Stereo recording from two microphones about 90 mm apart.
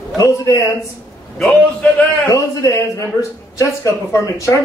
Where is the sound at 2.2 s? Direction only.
35° left (ahead or behind).